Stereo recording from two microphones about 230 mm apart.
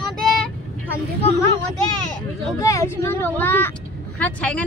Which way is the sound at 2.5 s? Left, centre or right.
Centre.